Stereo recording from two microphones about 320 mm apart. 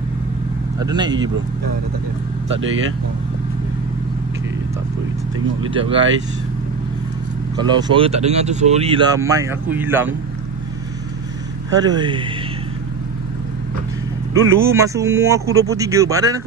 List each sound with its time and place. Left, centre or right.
0.7 s speech: centre
5.6 s speech: centre
7.5 s speech: centre
11.7 s speech: centre
14.3 s speech: centre